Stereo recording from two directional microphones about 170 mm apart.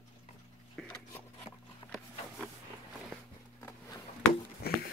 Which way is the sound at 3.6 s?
15° left (ahead or behind).